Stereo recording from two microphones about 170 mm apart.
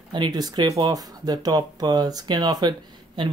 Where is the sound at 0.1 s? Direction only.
25° right (ahead or behind).